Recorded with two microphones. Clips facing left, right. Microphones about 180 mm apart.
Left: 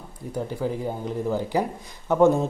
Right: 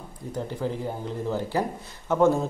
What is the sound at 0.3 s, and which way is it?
Speech, 10° left (ahead or behind).